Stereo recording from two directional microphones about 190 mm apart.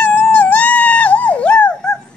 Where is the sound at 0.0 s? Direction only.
5° left (ahead or behind).